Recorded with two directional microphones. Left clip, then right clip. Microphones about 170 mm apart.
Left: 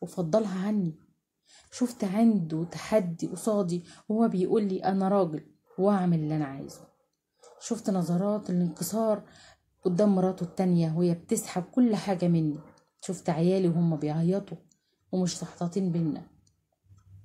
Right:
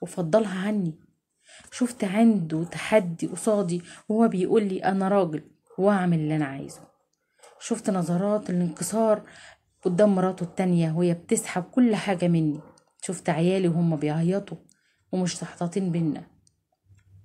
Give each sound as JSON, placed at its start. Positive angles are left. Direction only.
{"t": 0.3, "sound": "a woman's voice", "side_deg": -15}